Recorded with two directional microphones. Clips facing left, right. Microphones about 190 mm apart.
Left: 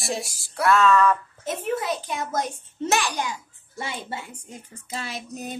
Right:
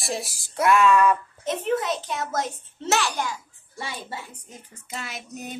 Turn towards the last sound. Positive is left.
turn(degrees=35)  # may be behind; listen again after turning